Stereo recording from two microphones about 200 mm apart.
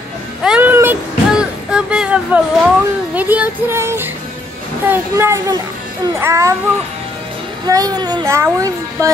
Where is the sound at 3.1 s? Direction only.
10° right (ahead or behind).